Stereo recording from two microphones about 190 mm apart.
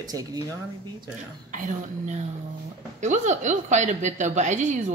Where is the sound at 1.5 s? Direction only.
40° right (ahead or behind).